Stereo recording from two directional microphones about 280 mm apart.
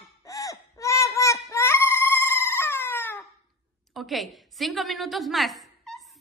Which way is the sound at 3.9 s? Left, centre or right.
Centre.